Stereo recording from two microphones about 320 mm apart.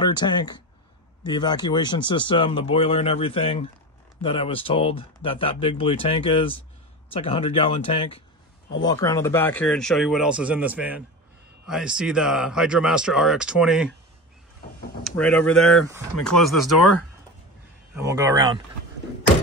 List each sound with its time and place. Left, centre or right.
0.0 s speech: centre
15.0 s speech: centre
18.0 s speech: centre